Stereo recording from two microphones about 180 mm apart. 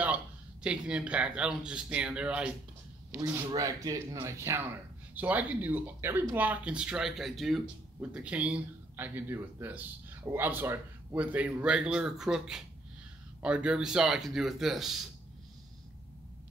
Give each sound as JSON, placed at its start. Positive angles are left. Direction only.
{"t": 0.7, "sound": "speech", "side_deg": -5}